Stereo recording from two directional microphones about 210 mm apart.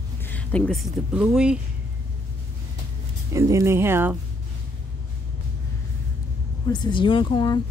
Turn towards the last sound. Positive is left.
turn(degrees=20)  # may be behind; listen again after turning